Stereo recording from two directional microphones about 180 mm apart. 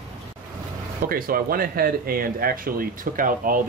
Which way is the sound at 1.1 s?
55° right (ahead or behind).